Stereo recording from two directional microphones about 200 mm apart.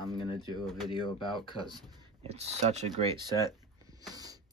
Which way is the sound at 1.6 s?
20° right (ahead or behind).